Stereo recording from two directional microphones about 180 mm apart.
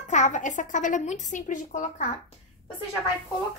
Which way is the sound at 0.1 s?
45° left (ahead or behind).